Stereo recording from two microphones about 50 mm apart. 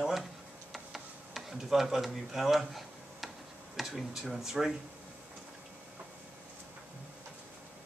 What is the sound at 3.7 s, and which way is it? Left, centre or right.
Speech, centre.